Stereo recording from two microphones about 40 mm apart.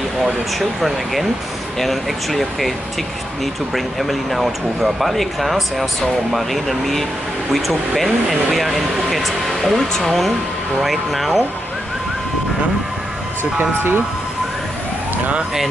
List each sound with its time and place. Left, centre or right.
0.6 s speech: centre
3.7 s speech: centre
13.4 s speech: right